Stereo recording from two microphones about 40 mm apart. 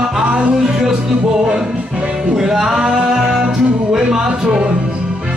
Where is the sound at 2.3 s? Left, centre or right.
Centre.